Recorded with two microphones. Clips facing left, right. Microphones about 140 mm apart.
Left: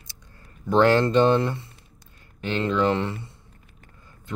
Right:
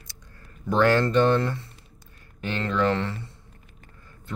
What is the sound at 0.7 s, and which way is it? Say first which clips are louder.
Speech: left 2 dB; 25° left (ahead or behind).